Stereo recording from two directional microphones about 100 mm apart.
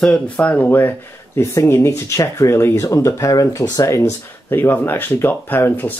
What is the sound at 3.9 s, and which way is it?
Speech, 25° left (ahead or behind).